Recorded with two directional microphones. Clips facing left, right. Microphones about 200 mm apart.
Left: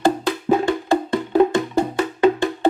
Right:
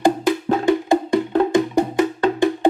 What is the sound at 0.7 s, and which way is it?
Wood block, 15° right (ahead or behind).